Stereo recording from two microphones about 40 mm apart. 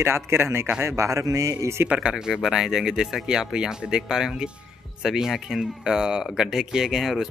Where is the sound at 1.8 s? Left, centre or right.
Right.